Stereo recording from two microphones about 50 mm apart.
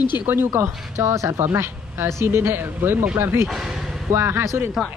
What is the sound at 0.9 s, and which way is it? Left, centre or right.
Speech, right.